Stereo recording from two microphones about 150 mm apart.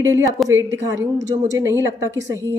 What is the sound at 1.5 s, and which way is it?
Speech, 20° right (ahead or behind).